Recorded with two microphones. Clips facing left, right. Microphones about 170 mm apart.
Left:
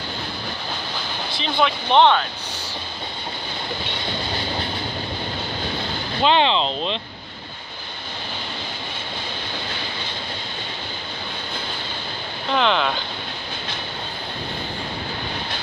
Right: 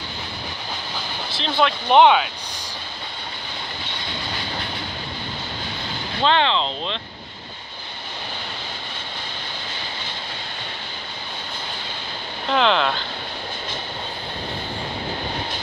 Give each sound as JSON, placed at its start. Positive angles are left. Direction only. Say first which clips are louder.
{"t": 1.4, "sound": "speech", "louder": "right 1 dB", "side_deg": 0}
{"t": 6.2, "sound": "speech", "louder": "left 2 dB", "side_deg": 15}
{"t": 12.4, "sound": "speech", "louder": "right 1 dB", "side_deg": 0}